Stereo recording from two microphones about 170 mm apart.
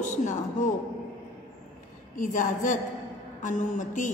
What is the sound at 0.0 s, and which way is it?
Speech, 45° left (ahead or behind).